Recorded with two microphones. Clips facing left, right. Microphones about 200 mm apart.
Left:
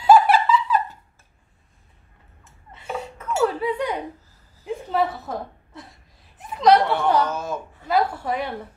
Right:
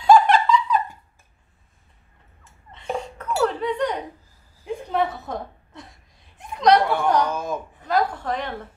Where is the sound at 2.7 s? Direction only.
5° left (ahead or behind).